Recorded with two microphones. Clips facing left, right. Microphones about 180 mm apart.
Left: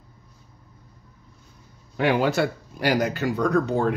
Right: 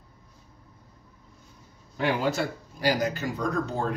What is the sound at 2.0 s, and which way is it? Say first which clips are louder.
Speech: left 5 dB; 70° left (ahead or behind).